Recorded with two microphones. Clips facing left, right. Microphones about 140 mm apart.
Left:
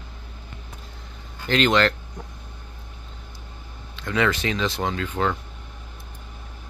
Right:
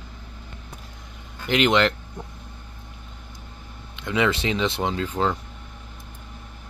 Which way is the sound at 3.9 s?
20° right (ahead or behind).